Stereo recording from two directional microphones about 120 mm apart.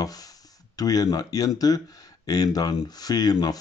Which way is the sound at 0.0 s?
30° left (ahead or behind).